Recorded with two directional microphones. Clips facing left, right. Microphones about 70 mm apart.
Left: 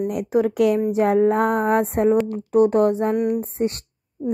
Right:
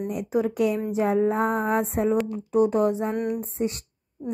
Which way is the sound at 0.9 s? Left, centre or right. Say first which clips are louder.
Left 5 dB; left.